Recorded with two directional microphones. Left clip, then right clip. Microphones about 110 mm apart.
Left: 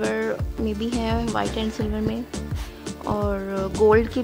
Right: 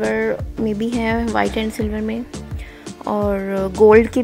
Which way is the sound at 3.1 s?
35° right (ahead or behind).